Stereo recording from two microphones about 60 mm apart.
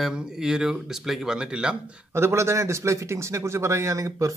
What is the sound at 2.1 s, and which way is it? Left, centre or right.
Speech, right.